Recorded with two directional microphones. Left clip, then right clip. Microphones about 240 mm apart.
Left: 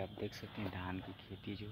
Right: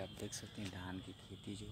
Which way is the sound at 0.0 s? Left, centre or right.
Centre.